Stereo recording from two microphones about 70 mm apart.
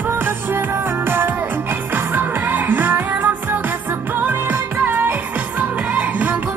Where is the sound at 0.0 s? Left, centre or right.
Right.